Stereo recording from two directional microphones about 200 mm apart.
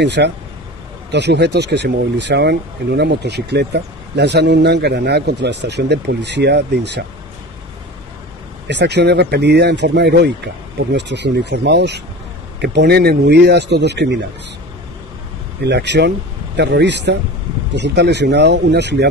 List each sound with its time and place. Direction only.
0.0 s speech: 60° right (ahead or behind)
8.6 s speech: 60° right (ahead or behind)
15.6 s speech: 60° right (ahead or behind)